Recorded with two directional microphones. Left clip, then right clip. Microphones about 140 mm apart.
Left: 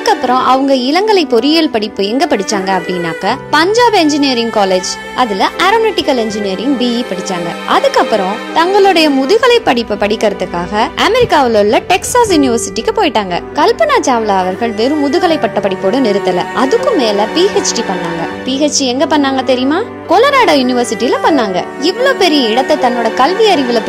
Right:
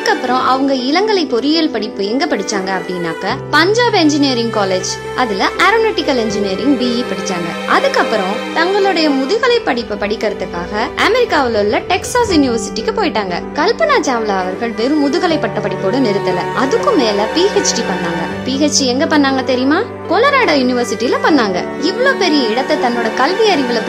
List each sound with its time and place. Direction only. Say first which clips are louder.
0.0 s a woman's voice: left 3 dB; 45° left (ahead or behind)
8.5 s a woman's voice: left 5 dB; 50° left (ahead or behind)